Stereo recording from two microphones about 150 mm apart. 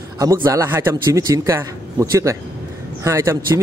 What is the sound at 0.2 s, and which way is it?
Speech, 20° right (ahead or behind).